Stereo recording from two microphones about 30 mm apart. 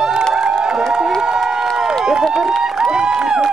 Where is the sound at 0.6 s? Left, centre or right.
Right.